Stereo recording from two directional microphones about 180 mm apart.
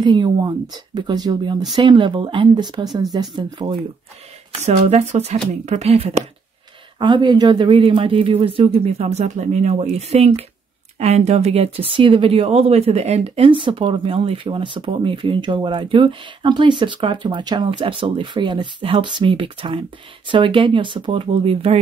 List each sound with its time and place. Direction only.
0.0 s speech: 25° right (ahead or behind)
4.5 s speech: 35° right (ahead or behind)
7.0 s speech: 25° right (ahead or behind)